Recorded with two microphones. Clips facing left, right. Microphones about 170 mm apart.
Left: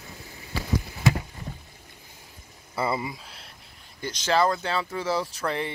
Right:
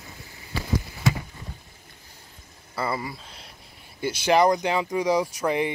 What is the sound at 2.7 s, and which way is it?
Speech, 20° left (ahead or behind).